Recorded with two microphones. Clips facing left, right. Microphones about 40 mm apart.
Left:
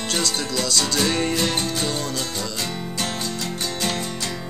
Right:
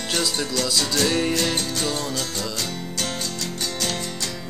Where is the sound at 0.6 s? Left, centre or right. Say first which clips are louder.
Left 1 dB; centre.